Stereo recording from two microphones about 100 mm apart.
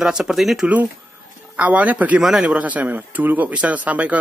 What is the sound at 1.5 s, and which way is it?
Speech, 15° right (ahead or behind).